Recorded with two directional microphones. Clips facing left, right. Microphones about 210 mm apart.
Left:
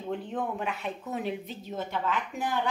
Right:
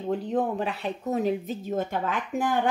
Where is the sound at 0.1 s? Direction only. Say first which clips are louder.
Right 6 dB; 40° right (ahead or behind).